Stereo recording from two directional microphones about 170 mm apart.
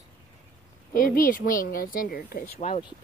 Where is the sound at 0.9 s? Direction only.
55° left (ahead or behind).